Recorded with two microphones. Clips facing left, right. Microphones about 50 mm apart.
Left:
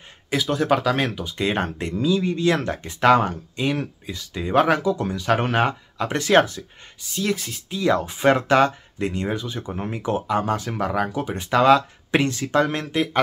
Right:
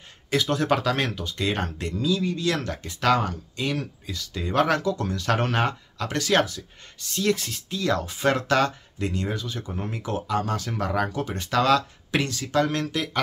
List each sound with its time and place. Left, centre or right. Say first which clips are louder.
0.3 s speech: left 2 dB; centre
1.4 s speech: left 4 dB; left
7.0 s speech: right 1 dB; centre
7.8 s speech: left 5 dB; left
10.9 s speech: left 1 dB; centre; by 13.2 s left